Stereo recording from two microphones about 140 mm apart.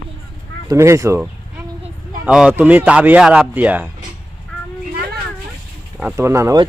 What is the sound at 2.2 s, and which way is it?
Speech, 10° right (ahead or behind).